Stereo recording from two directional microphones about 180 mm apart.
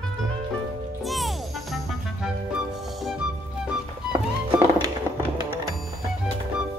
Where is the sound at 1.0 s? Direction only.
Centre (ahead or behind).